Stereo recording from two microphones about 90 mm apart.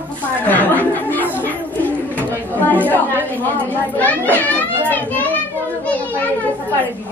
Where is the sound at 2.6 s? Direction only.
20° left (ahead or behind).